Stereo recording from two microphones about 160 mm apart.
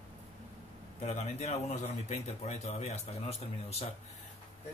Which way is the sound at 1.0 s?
40° left (ahead or behind).